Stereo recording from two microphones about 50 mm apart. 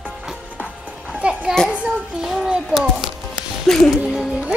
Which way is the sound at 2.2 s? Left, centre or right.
Centre.